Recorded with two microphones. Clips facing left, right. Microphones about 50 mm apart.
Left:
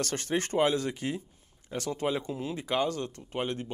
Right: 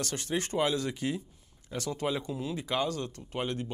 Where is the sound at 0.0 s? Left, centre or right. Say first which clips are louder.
Left 2 dB; left.